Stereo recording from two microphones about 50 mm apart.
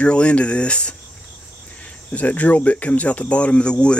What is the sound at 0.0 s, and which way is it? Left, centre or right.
Speech, left.